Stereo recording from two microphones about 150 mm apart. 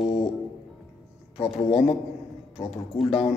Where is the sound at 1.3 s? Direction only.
45° left (ahead or behind).